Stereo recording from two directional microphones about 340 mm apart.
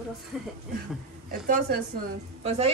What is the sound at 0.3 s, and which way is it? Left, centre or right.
Speech, centre.